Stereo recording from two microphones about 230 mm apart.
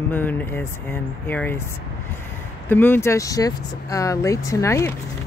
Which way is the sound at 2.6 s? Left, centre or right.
Centre.